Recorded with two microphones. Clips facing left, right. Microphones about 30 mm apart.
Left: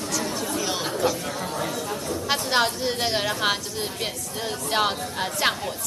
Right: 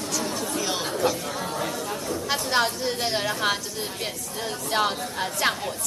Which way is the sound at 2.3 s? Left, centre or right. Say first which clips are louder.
Left 1 dB; centre.